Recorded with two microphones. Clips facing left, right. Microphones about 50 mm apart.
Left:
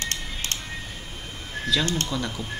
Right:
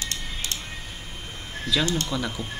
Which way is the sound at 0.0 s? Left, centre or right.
Left.